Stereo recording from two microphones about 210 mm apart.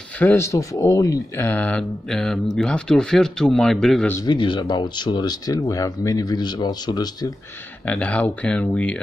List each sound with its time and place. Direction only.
0.2 s a man's voice: 10° left (ahead or behind)
4.3 s speech: 20° left (ahead or behind)
7.8 s a man's voice: 5° left (ahead or behind)